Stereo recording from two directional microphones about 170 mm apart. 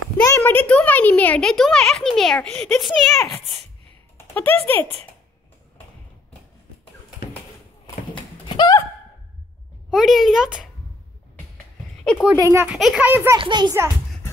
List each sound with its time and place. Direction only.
0.2 s a child's voice: 15° left (ahead or behind)
8.1 s a sound: 30° left (ahead or behind)
9.8 s speech: centre (ahead or behind)
12.0 s a sound: 5° left (ahead or behind)
12.4 s a child's voice: 15° right (ahead or behind)
12.7 s a child's voice: centre (ahead or behind)
13.4 s a child's voice: 25° right (ahead or behind)